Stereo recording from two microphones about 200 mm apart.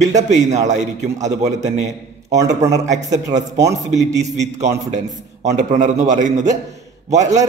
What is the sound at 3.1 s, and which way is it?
A man's voice, 35° right (ahead or behind).